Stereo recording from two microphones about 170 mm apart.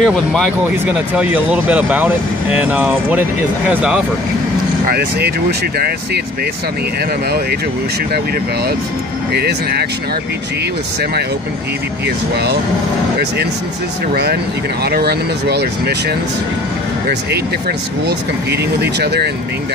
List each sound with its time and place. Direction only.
0.0 s speech: centre (ahead or behind)
4.8 s speech: 70° right (ahead or behind)
9.3 s speech: 70° right (ahead or behind)
14.1 s speech: 70° right (ahead or behind)